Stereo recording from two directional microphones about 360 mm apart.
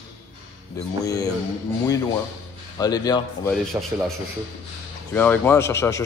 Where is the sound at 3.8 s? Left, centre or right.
Centre.